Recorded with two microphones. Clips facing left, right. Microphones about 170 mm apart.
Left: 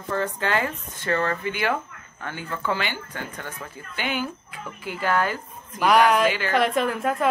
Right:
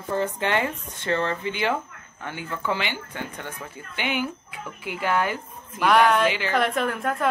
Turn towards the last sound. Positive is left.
turn(degrees=5)  # may be behind; listen again after turning